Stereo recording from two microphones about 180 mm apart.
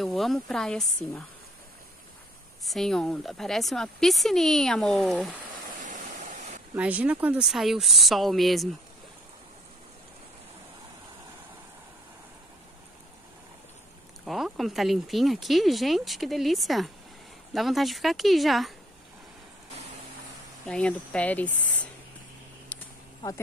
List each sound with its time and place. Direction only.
0.0 s speech: centre (ahead or behind)
2.6 s speech: centre (ahead or behind)
5.8 s stream: 45° right (ahead or behind)
6.7 s speech: 10° right (ahead or behind)
14.2 s speech: centre (ahead or behind)
20.6 s speech: 5° left (ahead or behind)
22.7 s a sound: 10° left (ahead or behind)